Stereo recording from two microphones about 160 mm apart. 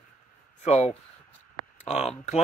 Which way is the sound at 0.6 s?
45° left (ahead or behind).